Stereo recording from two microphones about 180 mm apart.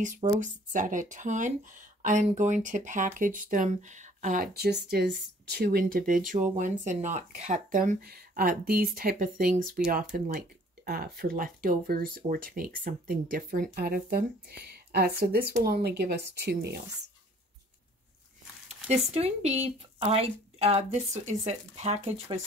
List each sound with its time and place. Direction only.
0.0 s speech: 45° right (ahead or behind); by 16.8 s 65° right (ahead or behind)
18.9 s speech: 35° right (ahead or behind)